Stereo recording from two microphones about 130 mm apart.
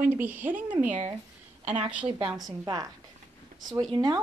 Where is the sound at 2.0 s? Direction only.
40° right (ahead or behind).